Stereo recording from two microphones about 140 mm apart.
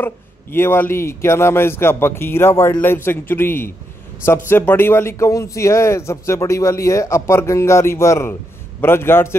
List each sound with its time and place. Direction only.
0.0 s a man's voice: 15° left (ahead or behind)